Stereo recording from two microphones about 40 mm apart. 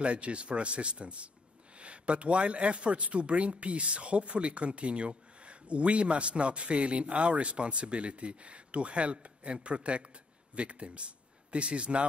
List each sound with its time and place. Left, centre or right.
0.0 s a man's voice: right